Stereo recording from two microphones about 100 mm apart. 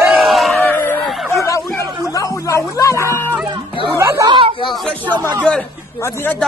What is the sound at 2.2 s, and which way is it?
Music, 30° left (ahead or behind).